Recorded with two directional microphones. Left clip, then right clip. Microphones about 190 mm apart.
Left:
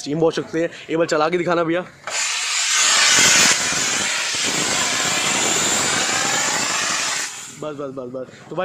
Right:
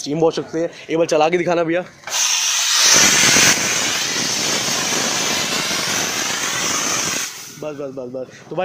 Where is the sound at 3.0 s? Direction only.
15° right (ahead or behind).